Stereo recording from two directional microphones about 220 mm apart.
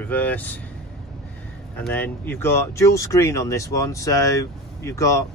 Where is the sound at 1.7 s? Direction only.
10° left (ahead or behind).